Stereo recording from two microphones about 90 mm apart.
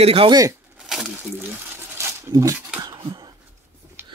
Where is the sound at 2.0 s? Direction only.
35° right (ahead or behind).